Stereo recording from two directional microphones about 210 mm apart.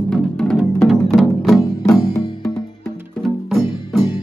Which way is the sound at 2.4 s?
Centre (ahead or behind).